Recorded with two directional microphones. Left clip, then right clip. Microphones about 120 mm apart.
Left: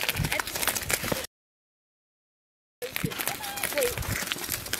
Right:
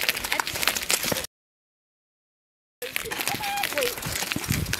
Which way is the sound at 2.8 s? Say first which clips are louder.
Right 3 dB; 5° left (ahead or behind).